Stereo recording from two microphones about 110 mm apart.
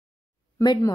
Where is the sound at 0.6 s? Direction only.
40° left (ahead or behind).